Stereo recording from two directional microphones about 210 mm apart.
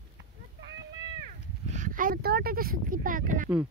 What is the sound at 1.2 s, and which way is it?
Speech, 35° right (ahead or behind).